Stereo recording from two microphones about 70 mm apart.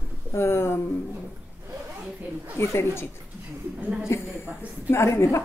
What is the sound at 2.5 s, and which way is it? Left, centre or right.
Speech, left.